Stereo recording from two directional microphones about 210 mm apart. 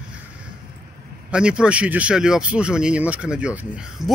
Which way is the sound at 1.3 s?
5° right (ahead or behind).